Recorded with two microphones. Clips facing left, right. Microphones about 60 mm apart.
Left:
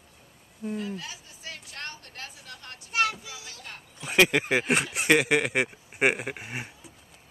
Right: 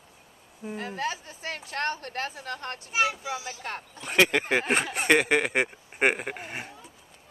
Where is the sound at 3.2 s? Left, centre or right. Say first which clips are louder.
Right 10 dB; right.